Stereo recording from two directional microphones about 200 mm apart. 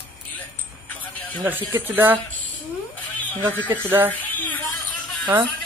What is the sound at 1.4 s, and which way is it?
Speech, 10° right (ahead or behind).